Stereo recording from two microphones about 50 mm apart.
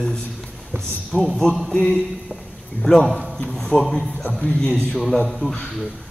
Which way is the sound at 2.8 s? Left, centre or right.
Centre.